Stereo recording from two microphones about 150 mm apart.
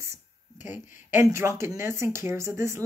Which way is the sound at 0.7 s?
15° right (ahead or behind).